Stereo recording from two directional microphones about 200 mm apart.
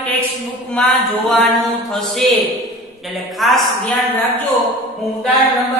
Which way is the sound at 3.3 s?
Centre (ahead or behind).